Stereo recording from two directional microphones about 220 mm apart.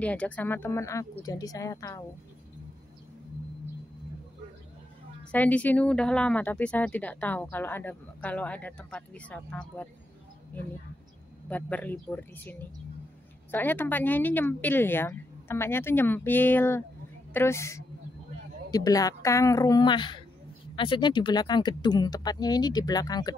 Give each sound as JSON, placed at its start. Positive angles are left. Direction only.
{"t": 0.0, "sound": "speech", "side_deg": 5}
{"t": 5.3, "sound": "speech", "side_deg": 5}